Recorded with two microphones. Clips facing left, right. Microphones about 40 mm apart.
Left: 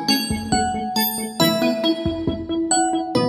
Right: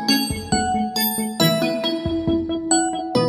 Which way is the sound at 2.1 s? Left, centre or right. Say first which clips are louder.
Right 1 dB; right.